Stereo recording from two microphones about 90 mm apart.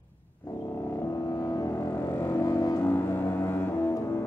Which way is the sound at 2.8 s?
25° left (ahead or behind).